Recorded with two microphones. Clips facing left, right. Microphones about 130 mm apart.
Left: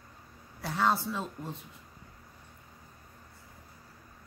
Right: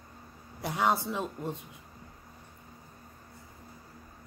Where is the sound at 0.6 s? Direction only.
15° right (ahead or behind).